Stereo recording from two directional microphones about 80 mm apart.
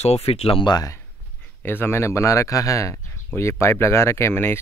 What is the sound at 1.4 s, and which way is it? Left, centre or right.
Speech, left.